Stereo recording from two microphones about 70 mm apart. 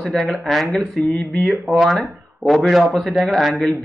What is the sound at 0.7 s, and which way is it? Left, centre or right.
Speech, centre.